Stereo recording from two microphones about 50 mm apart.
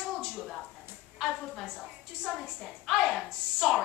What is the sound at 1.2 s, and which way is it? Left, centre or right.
A woman's voice, centre.